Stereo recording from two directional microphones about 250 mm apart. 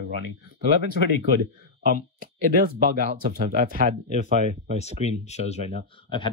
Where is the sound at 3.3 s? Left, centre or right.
Right.